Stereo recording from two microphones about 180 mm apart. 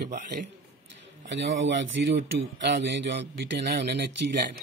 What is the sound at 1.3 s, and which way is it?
Speech, 90° right.